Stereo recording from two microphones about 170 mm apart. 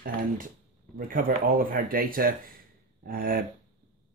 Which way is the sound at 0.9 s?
55° right (ahead or behind).